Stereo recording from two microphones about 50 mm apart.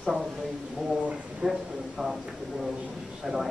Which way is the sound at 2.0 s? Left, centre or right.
Centre.